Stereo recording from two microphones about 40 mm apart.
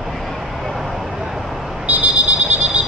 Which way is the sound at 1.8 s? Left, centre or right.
Right.